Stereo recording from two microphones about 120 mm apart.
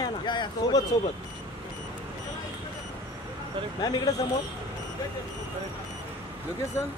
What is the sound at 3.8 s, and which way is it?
Speech, 35° left (ahead or behind).